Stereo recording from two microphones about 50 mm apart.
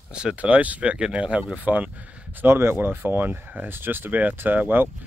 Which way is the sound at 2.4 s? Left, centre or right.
Right.